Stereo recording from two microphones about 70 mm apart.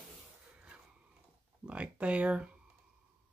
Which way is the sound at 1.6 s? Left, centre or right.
Centre.